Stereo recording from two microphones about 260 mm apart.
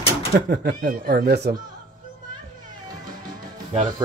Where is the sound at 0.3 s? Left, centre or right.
Right.